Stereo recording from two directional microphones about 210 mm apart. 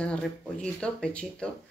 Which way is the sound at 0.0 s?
5° left (ahead or behind).